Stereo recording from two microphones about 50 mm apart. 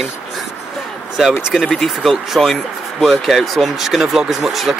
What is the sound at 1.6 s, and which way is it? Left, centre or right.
Speech, centre.